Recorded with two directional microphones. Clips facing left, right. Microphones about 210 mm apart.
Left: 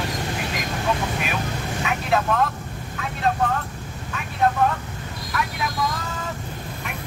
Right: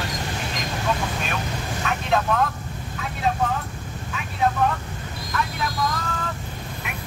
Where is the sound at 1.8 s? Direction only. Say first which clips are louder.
Even; centre (ahead or behind).